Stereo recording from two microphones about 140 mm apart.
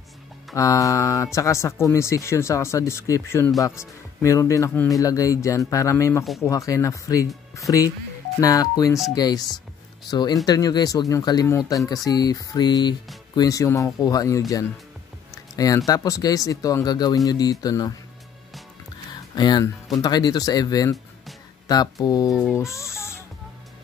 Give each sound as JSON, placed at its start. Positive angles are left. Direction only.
{"t": 0.6, "sound": "speech", "side_deg": 25}
{"t": 19.3, "sound": "speech", "side_deg": 30}